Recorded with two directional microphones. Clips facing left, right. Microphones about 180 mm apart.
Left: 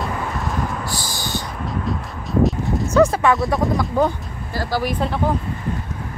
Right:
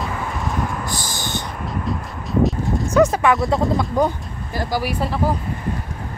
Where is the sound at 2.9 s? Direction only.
20° right (ahead or behind).